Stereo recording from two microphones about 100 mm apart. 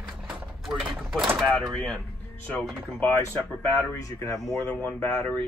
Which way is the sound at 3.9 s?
35° left (ahead or behind).